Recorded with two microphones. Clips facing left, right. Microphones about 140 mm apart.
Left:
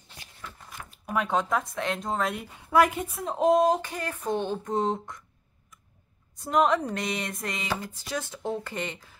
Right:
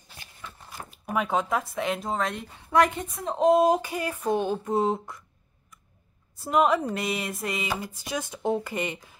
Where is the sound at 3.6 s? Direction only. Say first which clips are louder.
Right 2 dB; 10° right (ahead or behind).